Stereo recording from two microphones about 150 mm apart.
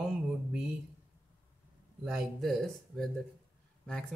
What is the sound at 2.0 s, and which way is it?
Speech, centre (ahead or behind).